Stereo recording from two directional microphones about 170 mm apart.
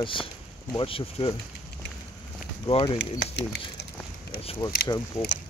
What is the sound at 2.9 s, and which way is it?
Speech, 90° left.